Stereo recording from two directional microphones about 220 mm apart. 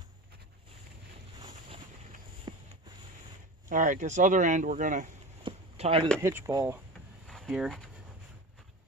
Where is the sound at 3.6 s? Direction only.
35° right (ahead or behind).